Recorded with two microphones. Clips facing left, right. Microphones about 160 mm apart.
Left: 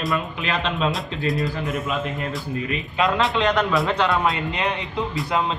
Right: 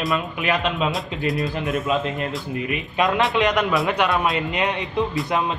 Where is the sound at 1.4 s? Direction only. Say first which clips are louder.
Right 2 dB; 20° right (ahead or behind).